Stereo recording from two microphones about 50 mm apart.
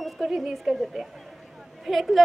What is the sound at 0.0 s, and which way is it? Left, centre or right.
A woman's voice, centre.